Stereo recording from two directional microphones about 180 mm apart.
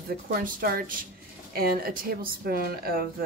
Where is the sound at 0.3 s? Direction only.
55° right (ahead or behind).